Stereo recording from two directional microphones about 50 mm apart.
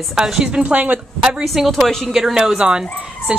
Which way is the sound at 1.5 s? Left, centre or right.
Centre.